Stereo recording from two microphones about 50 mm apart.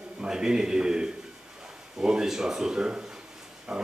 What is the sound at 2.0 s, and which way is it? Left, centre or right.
A man's voice, centre.